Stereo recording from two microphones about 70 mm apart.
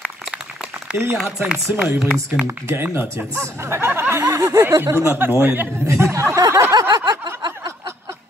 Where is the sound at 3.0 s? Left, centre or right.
Right.